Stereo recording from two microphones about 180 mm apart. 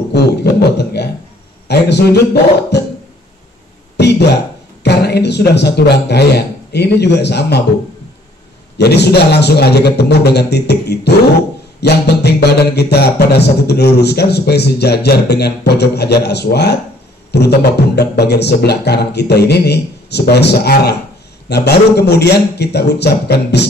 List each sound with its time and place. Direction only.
0.1 s a sound: 65° left (ahead or behind)
3.9 s throat clearing: 70° left (ahead or behind)
4.8 s a man's voice: 65° left (ahead or behind)
8.7 s music: 65° left (ahead or behind)
21.5 s a man's voice: 65° left (ahead or behind)